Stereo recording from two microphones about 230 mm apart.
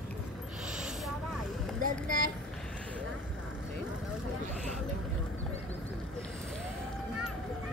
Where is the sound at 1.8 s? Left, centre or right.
Right.